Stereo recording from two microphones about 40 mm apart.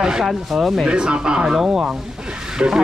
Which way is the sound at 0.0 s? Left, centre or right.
Centre.